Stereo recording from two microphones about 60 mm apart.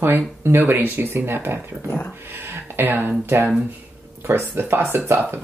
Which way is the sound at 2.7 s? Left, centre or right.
Right.